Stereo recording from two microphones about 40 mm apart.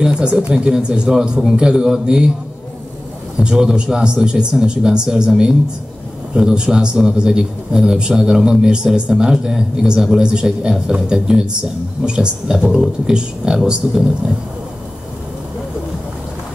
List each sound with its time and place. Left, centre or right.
0.0 s speech: right
3.3 s speech: centre
10.2 s speech: right